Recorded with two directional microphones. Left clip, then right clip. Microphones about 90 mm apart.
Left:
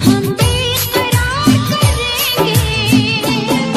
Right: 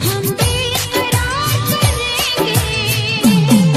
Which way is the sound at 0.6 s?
40° right (ahead or behind).